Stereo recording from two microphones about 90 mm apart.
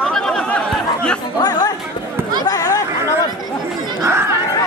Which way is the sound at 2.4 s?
40° left (ahead or behind).